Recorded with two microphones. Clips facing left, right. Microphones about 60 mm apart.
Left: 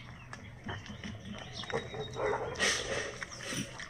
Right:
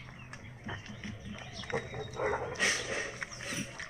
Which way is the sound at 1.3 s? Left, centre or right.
Centre.